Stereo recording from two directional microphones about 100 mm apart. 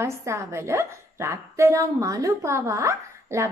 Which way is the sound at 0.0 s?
30° right (ahead or behind).